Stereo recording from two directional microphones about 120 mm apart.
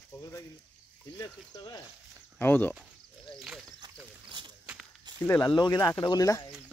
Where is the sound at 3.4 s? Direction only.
5° right (ahead or behind).